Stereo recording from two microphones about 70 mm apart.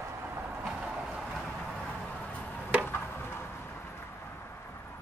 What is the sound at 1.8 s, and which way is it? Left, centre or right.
Vehicle, centre.